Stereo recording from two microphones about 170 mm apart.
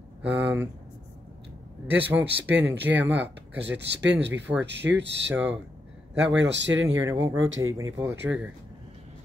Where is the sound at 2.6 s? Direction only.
10° right (ahead or behind).